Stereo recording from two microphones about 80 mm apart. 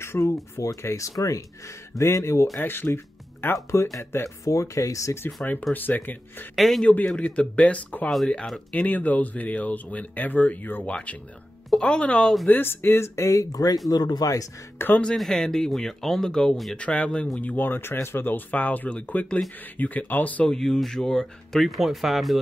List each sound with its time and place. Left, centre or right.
0.0 s speech: left
2.6 s speech: left
5.4 s speech: centre
6.5 s speech: centre
7.2 s speech: centre
11.7 s speech: centre
12.4 s speech: left
14.8 s speech: left
15.1 s speech: centre
20.5 s speech: centre